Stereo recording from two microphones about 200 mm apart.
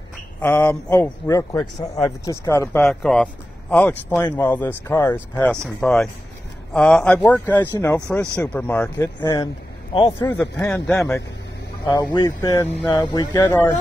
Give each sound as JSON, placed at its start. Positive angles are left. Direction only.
{"t": 0.4, "sound": "speech", "side_deg": 10}
{"t": 9.2, "sound": "speech", "side_deg": 20}
{"t": 10.6, "sound": "speech", "side_deg": 5}
{"t": 11.8, "sound": "speech", "side_deg": 20}
{"t": 12.7, "sound": "speech", "side_deg": 25}